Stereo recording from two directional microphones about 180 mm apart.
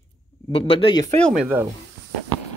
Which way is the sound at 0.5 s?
30° left (ahead or behind).